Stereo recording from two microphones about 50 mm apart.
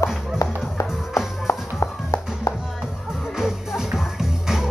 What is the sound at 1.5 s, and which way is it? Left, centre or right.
Music, left.